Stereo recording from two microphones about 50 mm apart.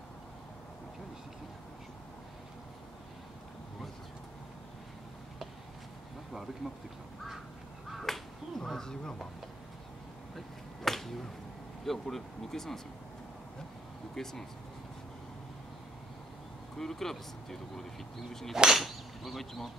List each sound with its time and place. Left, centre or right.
6.3 s whip: centre
7.9 s a sound: centre
10.3 s a sound: centre
11.8 s speech: centre
14.1 s speech: centre
16.7 s speech: centre
18.5 s whip: centre